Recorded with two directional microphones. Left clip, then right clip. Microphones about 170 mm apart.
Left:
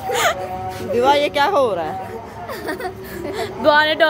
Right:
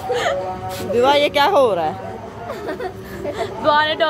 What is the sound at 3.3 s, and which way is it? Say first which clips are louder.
Speech: left 2 dB; 35° left (ahead or behind).